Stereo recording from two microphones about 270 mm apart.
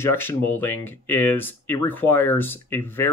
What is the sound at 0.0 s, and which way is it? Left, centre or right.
Speech, centre.